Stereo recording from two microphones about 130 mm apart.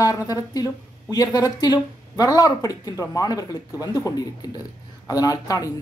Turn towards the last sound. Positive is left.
turn(degrees=25)  # may be behind; listen again after turning